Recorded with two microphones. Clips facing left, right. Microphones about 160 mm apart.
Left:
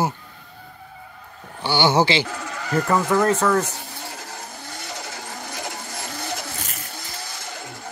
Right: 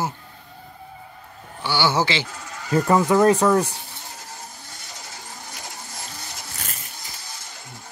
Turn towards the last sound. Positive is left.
turn(degrees=80)